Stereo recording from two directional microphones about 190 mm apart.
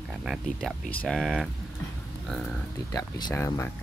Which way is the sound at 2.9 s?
20° left (ahead or behind).